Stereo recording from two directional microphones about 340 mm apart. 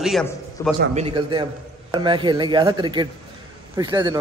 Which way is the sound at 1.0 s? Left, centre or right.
Centre.